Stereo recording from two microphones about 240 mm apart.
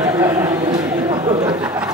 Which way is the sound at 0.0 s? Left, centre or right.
Centre.